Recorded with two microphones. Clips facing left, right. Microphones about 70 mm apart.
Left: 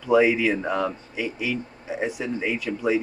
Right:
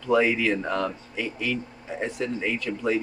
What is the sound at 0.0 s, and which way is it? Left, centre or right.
Speech, centre.